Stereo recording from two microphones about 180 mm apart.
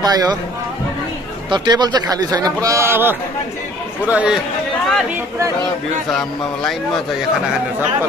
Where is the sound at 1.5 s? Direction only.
25° right (ahead or behind); by 4.3 s 5° right (ahead or behind).